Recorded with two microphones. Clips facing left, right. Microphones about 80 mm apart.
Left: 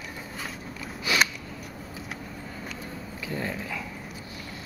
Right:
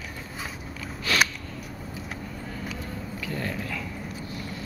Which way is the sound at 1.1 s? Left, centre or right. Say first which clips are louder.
Right 1 dB; centre.